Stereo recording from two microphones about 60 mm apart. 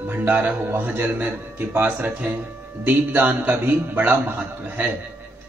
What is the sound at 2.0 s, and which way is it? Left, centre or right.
A man's voice, right.